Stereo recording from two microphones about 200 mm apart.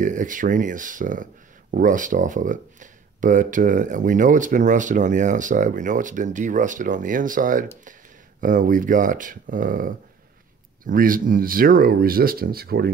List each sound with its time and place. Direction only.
0.0 s speech: 40° right (ahead or behind)